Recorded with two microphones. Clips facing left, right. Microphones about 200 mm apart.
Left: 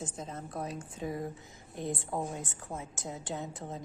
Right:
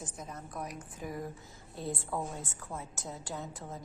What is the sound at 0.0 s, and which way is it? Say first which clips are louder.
A woman's voice: left 4 dB; 25° left (ahead or behind).